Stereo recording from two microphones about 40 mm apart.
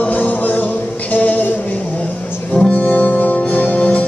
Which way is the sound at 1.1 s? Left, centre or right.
Left.